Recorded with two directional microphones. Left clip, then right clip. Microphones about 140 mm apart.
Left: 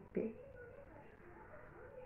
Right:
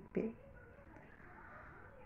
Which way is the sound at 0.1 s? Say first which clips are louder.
Right 1 dB; 20° right (ahead or behind).